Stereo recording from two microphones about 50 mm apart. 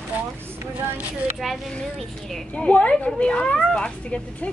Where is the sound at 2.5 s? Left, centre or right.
Left.